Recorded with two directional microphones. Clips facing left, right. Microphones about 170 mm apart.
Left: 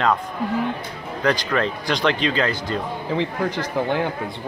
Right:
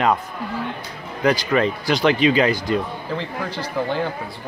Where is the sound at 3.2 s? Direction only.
15° left (ahead or behind).